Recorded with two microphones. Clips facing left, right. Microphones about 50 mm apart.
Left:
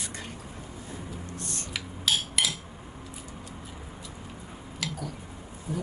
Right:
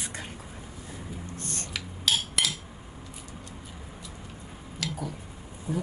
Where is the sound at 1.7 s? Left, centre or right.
Centre.